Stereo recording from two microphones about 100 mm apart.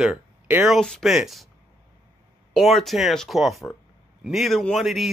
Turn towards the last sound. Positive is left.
turn(degrees=0)  # may be behind; listen again after turning